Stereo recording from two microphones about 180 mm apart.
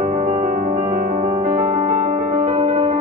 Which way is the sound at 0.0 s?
45° right (ahead or behind).